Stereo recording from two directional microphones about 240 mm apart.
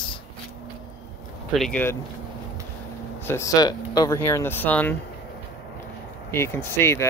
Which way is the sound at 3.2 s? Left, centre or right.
Centre.